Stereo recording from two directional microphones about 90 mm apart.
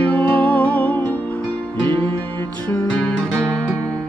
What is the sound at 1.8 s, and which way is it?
Music, 60° right (ahead or behind).